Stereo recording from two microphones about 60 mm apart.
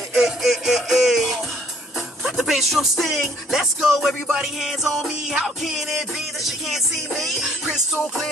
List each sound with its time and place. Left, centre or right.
0.1 s music: centre